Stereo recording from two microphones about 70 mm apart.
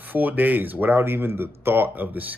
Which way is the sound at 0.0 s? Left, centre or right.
Right.